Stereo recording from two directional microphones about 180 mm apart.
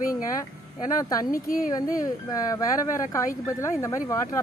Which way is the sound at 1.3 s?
50° left (ahead or behind).